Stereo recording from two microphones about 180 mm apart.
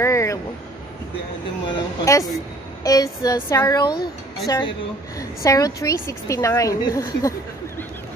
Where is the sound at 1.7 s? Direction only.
20° left (ahead or behind).